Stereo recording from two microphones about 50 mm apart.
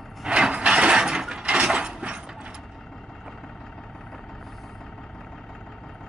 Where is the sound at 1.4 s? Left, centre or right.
Right.